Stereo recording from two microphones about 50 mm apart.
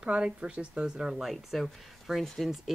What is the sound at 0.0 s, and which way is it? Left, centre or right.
Speech, centre.